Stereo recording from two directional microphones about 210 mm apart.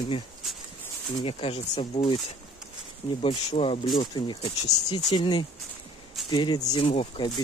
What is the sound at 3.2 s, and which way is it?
Speech, 25° left (ahead or behind).